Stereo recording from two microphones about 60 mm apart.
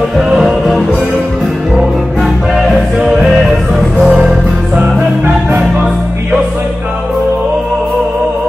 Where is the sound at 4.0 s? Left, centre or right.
Centre.